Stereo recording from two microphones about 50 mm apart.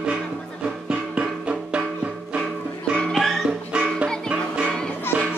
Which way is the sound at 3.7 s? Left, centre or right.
Right.